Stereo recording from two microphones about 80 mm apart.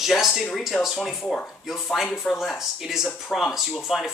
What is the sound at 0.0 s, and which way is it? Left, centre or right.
Speech, centre.